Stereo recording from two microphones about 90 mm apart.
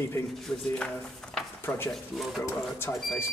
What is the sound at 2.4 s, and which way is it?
Speech, 30° left (ahead or behind).